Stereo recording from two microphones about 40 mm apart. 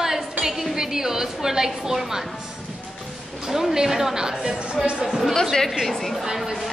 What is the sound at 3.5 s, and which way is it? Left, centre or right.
A woman's voice, centre.